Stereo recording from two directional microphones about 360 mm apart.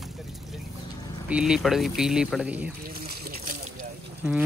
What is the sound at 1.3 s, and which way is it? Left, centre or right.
Speech, centre.